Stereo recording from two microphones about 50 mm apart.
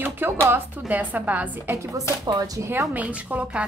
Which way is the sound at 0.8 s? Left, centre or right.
Right.